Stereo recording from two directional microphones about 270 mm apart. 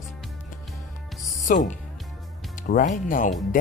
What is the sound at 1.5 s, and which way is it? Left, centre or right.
Speech, left.